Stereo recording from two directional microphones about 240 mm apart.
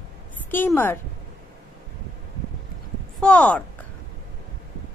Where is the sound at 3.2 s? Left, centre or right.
Centre.